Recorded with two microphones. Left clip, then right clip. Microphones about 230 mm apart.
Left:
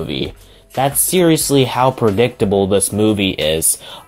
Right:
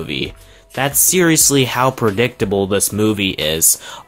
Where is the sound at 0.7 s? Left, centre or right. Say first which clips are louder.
Left 1 dB; centre.